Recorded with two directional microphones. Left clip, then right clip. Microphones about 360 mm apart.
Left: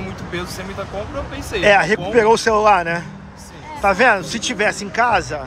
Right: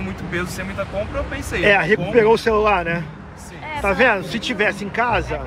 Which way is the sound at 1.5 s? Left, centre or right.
Centre.